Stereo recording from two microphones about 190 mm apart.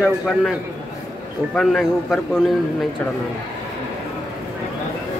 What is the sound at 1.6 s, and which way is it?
Speech, 5° left (ahead or behind).